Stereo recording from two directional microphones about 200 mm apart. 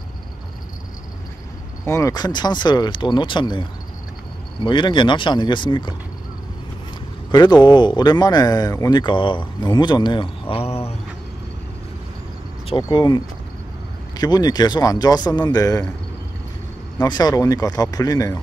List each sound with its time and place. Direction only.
1.9 s speech: 15° left (ahead or behind)
4.6 s speech: 25° left (ahead or behind)
7.2 s speech: 20° left (ahead or behind)
12.8 s speech: 20° left (ahead or behind)
17.0 s speech: 20° left (ahead or behind)